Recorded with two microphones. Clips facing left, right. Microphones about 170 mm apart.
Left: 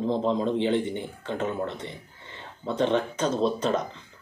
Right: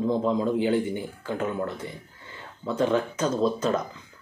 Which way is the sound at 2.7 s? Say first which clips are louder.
Even; 30° left (ahead or behind).